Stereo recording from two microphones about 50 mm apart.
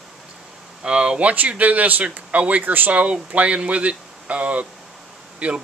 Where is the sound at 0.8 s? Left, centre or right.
Centre.